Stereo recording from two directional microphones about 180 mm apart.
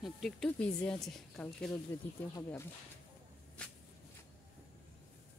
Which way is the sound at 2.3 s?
15° left (ahead or behind).